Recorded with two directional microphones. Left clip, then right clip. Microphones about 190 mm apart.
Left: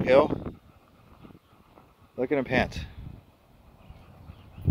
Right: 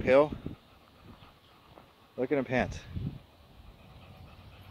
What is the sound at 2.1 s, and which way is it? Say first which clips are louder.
Speech: left 4 dB; 20° left (ahead or behind).